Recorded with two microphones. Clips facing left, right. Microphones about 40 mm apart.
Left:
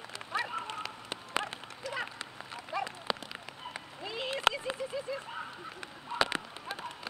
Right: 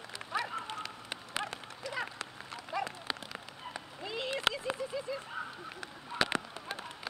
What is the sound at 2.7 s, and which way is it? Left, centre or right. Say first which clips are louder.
Run: left 2 dB; centre.